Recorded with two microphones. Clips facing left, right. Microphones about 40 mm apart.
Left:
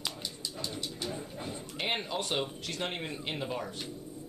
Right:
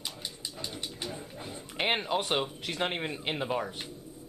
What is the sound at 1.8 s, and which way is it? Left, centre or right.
Speech, right.